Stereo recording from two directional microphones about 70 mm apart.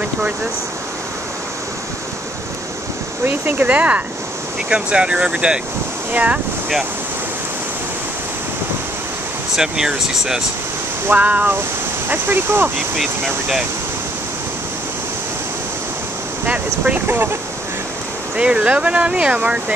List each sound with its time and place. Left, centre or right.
3.3 s speech: right
9.6 s speech: centre
11.1 s speech: right
12.9 s speech: centre
16.4 s speech: right
18.3 s speech: centre